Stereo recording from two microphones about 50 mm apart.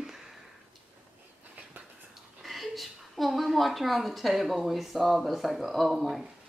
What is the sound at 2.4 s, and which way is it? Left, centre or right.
A woman's voice, centre.